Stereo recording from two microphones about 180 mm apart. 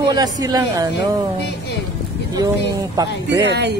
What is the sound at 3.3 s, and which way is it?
Speech, 70° right (ahead or behind).